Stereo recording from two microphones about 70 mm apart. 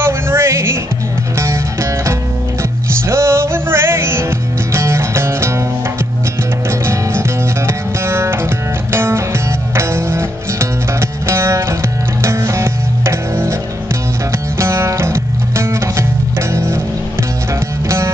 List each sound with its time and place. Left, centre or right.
0.0 s music: right
6.7 s music: right
14.6 s music: right
17.8 s music: right